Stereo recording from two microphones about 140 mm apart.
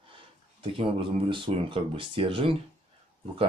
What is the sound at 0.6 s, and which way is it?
Speech, 40° right (ahead or behind).